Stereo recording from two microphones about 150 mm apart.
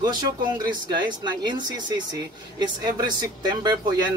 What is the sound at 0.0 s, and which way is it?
A man's voice, 30° right (ahead or behind).